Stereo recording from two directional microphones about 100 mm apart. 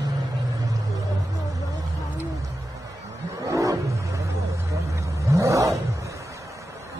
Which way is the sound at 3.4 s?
35° right (ahead or behind).